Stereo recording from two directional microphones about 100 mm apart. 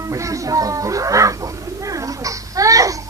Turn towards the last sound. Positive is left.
turn(degrees=-35)  # may be behind; listen again after turning